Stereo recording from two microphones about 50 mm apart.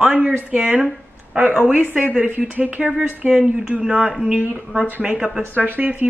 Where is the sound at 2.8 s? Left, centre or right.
Centre.